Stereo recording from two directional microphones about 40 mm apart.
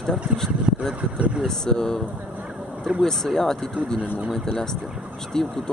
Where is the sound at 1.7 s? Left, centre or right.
Centre.